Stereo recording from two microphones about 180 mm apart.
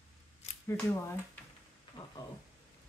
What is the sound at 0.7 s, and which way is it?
Speech, 10° left (ahead or behind).